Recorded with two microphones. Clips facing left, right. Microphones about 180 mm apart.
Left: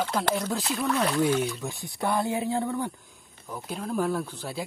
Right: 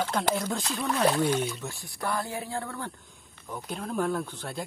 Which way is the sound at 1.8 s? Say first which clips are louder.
Left 5 dB; 20° left (ahead or behind).